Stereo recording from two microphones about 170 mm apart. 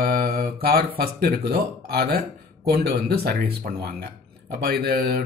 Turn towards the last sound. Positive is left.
turn(degrees=-65)  # may be behind; listen again after turning